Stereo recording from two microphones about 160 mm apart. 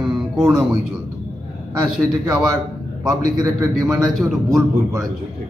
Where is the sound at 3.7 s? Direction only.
Centre (ahead or behind).